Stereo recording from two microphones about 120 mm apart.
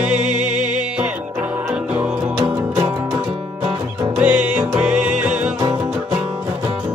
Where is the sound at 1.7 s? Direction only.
15° right (ahead or behind).